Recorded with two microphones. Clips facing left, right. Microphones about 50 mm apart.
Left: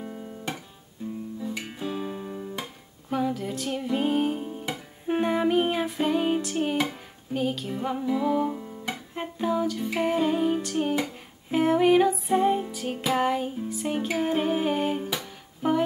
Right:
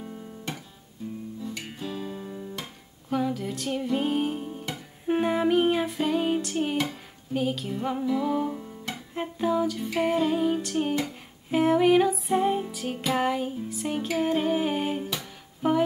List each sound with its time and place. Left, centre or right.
0.0 s guitar: centre
1.4 s music: centre